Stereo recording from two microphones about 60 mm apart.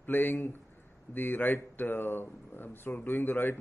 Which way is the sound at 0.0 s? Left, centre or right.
Left.